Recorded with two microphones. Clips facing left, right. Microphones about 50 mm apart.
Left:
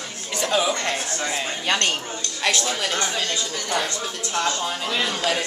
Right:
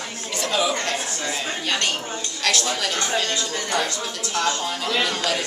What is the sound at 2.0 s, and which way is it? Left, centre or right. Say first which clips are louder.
Speech: right 1 dB; centre.